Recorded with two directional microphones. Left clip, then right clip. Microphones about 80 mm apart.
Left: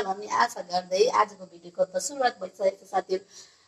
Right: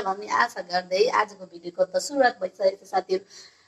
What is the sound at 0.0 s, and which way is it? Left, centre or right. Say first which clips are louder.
A woman's voice: right 2 dB; right.